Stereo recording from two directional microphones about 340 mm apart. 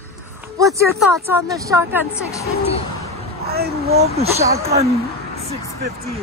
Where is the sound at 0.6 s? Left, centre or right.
Centre.